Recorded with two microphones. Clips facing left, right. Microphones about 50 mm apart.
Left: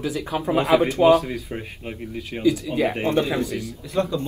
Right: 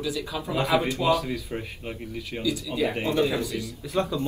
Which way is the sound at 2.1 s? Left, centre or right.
Left.